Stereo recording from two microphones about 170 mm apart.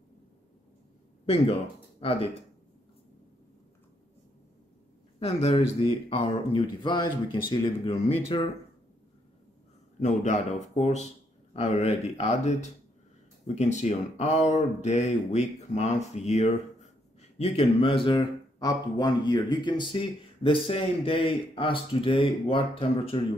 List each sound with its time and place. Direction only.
1.2 s speech: 35° left (ahead or behind)
5.2 s a man's voice: 35° left (ahead or behind)
9.9 s a man's voice: 45° left (ahead or behind)